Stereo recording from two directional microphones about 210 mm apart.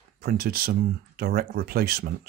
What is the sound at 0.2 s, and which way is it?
Speech, 45° right (ahead or behind).